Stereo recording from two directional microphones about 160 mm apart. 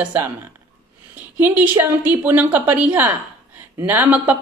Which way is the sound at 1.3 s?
10° right (ahead or behind).